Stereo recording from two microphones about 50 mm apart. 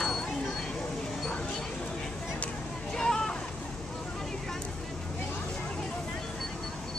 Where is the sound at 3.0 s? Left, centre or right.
Centre.